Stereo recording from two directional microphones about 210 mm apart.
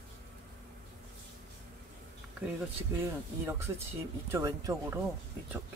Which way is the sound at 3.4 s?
10° right (ahead or behind).